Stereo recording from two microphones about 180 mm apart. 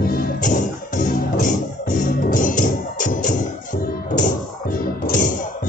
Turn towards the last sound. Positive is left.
turn(degrees=50)  # may be behind; listen again after turning